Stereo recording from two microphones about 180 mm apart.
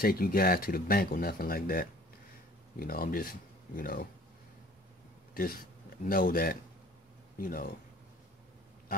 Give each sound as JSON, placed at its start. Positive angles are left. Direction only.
{"t": 0.0, "sound": "speech", "side_deg": 55}
{"t": 5.3, "sound": "speech", "side_deg": 55}